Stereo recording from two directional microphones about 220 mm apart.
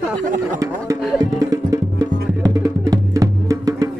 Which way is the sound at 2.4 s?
15° right (ahead or behind).